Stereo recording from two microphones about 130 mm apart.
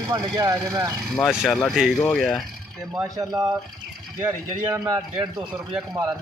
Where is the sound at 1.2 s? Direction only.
5° right (ahead or behind).